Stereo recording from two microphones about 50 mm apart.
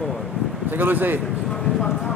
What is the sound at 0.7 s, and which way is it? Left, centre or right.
Speech, right.